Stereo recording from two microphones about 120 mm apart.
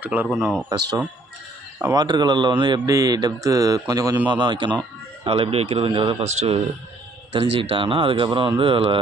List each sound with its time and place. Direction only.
0.0 s speech: 15° right (ahead or behind)
0.3 s speech: centre (ahead or behind)
1.8 s speech: 25° right (ahead or behind)
2.0 s speech: 40° right (ahead or behind)
6.2 s speech: 65° right (ahead or behind)
7.3 s speech: 50° right (ahead or behind)